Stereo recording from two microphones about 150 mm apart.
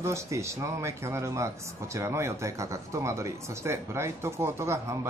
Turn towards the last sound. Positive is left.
turn(degrees=-20)  # may be behind; listen again after turning